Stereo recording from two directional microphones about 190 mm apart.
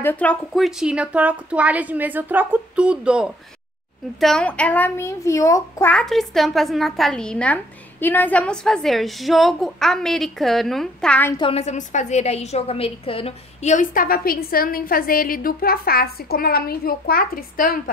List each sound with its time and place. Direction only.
0.0 s a child's voice: 10° left (ahead or behind)
11.3 s a woman's voice: 30° left (ahead or behind); by 17.9 s 50° left (ahead or behind)